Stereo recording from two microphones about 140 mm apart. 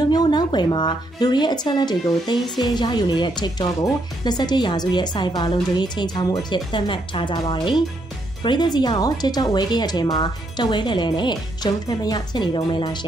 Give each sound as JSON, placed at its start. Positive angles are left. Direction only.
{"t": 0.1, "sound": "speech", "side_deg": 30}